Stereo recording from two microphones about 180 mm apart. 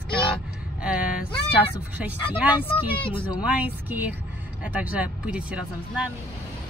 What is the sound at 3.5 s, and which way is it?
Speech, 10° right (ahead or behind).